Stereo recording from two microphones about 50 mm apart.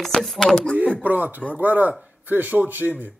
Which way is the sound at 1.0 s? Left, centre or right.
Right.